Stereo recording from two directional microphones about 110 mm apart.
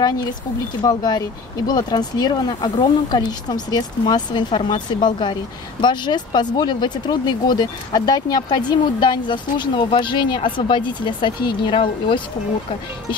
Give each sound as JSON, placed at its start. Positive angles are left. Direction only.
{"t": 0.8, "sound": "speech", "side_deg": 40}